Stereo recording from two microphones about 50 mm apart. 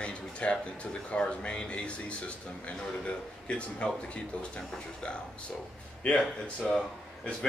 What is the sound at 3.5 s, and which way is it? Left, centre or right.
Speech, left.